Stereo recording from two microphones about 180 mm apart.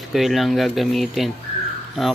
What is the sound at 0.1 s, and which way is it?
Speech, centre (ahead or behind).